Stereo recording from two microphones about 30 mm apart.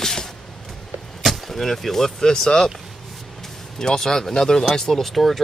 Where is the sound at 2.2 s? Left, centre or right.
Left.